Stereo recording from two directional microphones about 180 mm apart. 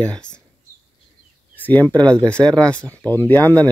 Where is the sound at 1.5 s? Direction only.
10° left (ahead or behind).